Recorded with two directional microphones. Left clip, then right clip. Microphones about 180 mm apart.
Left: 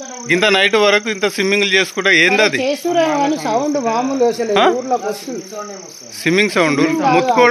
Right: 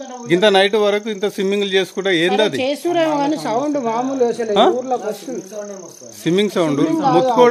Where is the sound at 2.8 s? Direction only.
40° left (ahead or behind).